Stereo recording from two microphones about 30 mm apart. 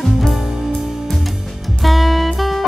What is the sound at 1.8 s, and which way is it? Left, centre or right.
Music, centre.